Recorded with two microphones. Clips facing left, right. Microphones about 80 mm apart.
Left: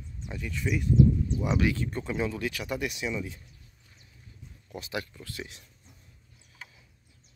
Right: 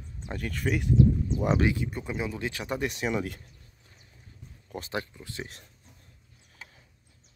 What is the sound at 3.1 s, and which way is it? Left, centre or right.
Speech, right.